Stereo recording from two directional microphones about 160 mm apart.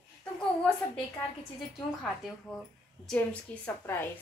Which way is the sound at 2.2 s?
Centre (ahead or behind).